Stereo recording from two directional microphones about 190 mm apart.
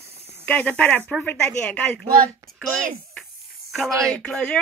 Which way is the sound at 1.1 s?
5° left (ahead or behind).